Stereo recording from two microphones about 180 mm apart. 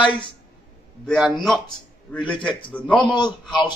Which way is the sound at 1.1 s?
5° left (ahead or behind).